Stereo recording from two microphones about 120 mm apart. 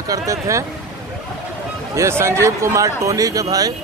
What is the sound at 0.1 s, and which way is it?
Speech, 25° right (ahead or behind).